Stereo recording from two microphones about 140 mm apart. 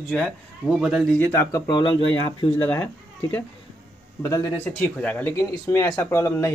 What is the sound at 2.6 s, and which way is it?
Speech, 10° left (ahead or behind).